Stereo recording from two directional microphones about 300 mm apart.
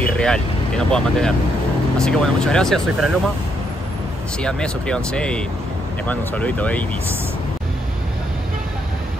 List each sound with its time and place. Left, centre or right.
0.0 s speech: centre
4.4 s speech: centre